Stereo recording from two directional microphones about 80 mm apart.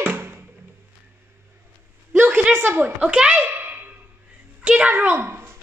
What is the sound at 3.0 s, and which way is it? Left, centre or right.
Speech, centre.